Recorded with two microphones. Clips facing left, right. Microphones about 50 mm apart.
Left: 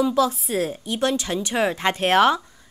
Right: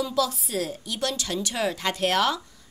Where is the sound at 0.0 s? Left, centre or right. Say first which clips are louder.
Left 6 dB; left.